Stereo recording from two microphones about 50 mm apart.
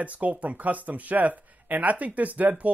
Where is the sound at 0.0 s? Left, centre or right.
Right.